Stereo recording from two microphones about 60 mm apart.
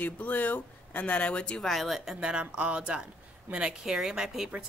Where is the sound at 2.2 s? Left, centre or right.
Centre.